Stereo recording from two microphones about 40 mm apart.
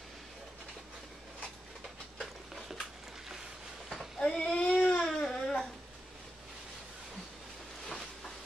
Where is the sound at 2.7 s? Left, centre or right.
Centre.